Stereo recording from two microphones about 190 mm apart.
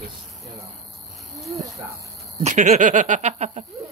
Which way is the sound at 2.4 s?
40° right (ahead or behind).